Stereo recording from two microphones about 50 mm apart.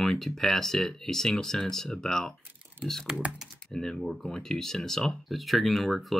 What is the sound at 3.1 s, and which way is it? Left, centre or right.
Speech, right.